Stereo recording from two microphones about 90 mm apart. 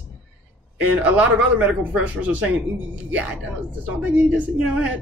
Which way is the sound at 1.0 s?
15° right (ahead or behind).